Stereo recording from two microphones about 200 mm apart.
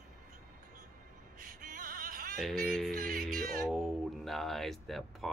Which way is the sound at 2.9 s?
45° right (ahead or behind).